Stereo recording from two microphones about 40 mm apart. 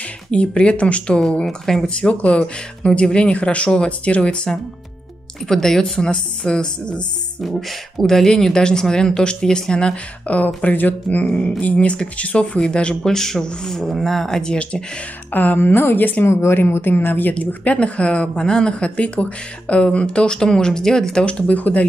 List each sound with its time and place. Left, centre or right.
0.3 s speech: left
1.4 s speech: centre
2.0 s speech: left
5.5 s speech: centre
8.0 s speech: centre
10.2 s speech: left
11.2 s speech: left
12.5 s speech: left
13.0 s speech: centre
14.5 s speech: left
15.3 s speech: left
16.3 s speech: left
17.3 s speech: left
21.5 s speech: left